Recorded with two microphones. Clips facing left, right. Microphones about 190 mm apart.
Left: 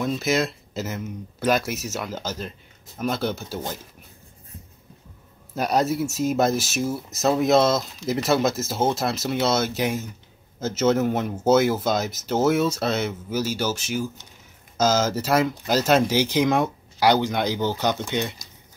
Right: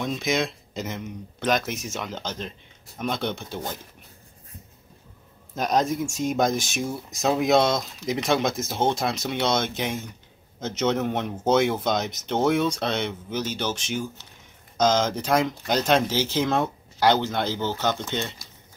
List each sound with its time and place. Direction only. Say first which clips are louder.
0.0 s speech: left 2 dB; 5° left (ahead or behind)
5.5 s speech: left 1 dB; 10° left (ahead or behind)